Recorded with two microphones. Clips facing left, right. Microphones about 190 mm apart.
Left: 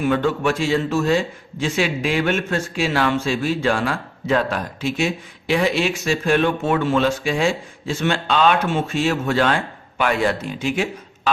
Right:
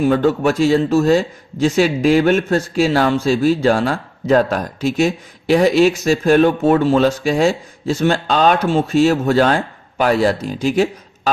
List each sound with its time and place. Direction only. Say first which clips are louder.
0.0 s speech: right 5 dB; 40° right (ahead or behind)